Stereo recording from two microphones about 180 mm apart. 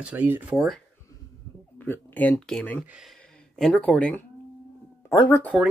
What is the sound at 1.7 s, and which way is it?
Speech, 10° left (ahead or behind).